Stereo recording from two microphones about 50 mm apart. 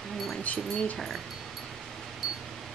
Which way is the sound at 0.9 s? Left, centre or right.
Centre.